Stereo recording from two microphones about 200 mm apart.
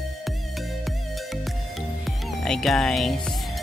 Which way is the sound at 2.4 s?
Centre (ahead or behind).